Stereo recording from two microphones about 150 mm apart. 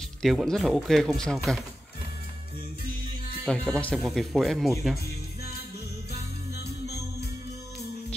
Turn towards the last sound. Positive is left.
turn(degrees=90)